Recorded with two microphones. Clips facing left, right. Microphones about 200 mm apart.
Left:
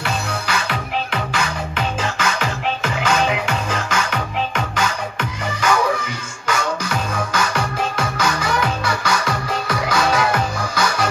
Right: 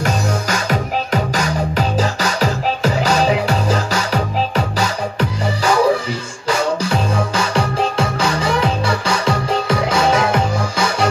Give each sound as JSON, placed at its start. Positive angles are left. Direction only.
{"t": 0.0, "sound": "music", "side_deg": -40}
{"t": 6.4, "sound": "music", "side_deg": -30}